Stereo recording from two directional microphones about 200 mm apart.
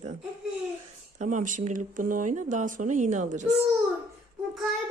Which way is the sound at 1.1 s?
40° right (ahead or behind).